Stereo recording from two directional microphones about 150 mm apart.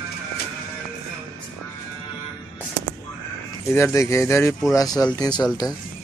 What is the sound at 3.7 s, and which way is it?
Speech, 20° left (ahead or behind).